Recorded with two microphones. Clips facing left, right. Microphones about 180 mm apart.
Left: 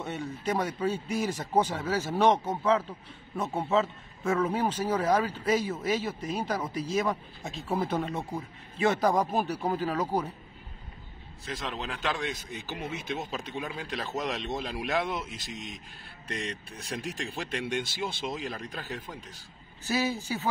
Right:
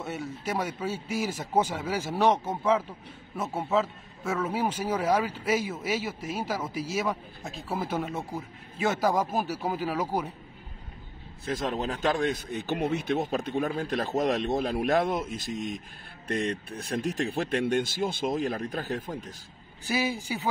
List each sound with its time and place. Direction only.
0.0 s a man's voice: 5° right (ahead or behind)
11.4 s speech: 45° right (ahead or behind)
19.8 s a man's voice: 10° right (ahead or behind)